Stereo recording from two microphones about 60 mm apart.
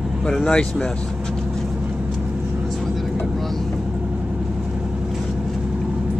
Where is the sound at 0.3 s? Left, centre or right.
Centre.